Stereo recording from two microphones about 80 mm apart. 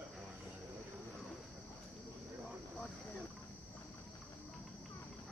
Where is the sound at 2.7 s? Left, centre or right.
Centre.